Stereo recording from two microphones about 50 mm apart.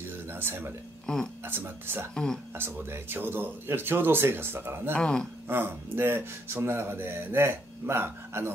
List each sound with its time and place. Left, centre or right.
0.3 s speech: right
1.0 s speech: centre
1.4 s speech: right
4.9 s speech: centre
5.5 s speech: right